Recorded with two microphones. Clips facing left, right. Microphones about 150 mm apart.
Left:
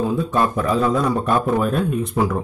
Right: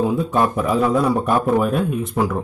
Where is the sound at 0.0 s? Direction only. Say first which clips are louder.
Right 1 dB; 15° right (ahead or behind).